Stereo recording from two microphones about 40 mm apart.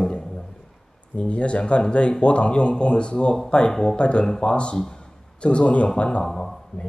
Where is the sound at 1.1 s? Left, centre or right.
Left.